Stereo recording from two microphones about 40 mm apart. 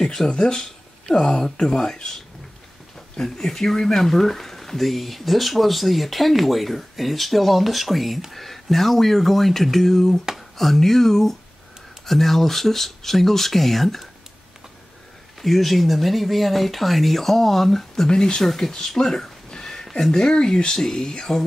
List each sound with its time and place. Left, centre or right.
0.0 s speech: centre
0.3 s speech: left
3.2 s speech: centre
15.4 s speech: centre